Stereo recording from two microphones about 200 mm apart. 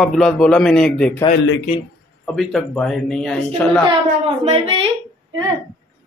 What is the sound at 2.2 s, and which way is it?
Speech, centre (ahead or behind).